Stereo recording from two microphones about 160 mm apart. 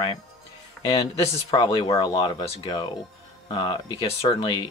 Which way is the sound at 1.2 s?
35° left (ahead or behind).